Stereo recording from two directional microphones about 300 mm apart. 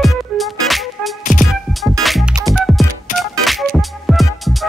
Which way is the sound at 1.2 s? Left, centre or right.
Left.